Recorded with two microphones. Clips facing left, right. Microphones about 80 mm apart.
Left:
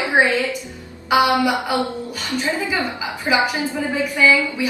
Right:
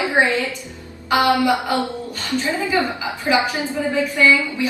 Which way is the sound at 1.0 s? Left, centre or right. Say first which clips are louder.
Left 1 dB; centre.